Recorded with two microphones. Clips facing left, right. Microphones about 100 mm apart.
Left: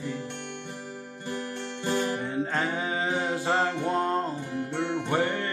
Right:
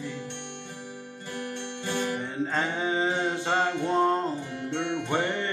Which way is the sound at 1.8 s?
40° left (ahead or behind).